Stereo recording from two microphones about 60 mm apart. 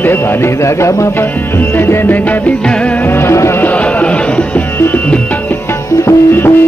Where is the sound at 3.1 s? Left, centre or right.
Left.